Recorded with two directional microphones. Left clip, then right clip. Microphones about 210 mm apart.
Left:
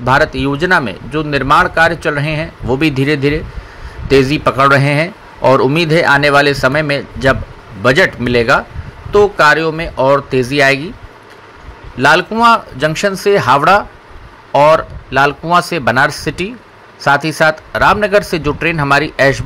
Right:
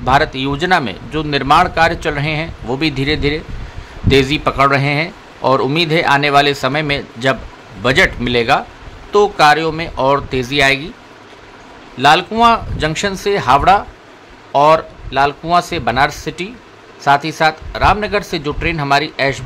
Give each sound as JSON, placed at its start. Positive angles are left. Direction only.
{"t": 0.0, "sound": "speech", "side_deg": 10}
{"t": 12.0, "sound": "speech", "side_deg": 10}